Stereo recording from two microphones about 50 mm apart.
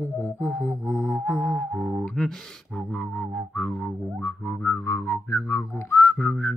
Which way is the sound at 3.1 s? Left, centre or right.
Centre.